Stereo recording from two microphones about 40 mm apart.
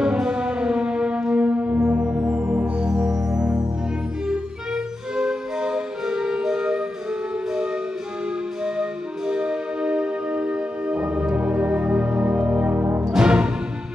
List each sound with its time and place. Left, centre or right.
0.0 s music: right
3.1 s music: centre
8.6 s music: centre